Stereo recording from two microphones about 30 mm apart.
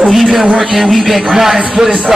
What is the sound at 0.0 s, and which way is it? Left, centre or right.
A man's voice, centre.